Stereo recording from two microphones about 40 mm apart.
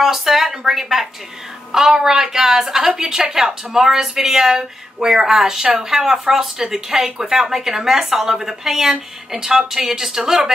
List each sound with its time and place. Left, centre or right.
0.0 s a woman's voice: centre